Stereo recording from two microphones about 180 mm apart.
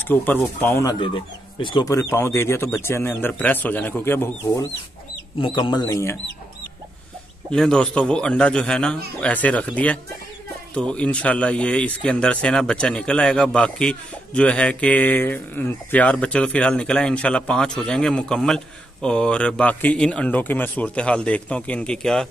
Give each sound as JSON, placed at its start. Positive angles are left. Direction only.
{"t": 0.0, "sound": "speech", "side_deg": 10}
{"t": 0.9, "sound": "speech", "side_deg": 25}
{"t": 5.4, "sound": "speech", "side_deg": 25}
{"t": 7.5, "sound": "speech", "side_deg": 5}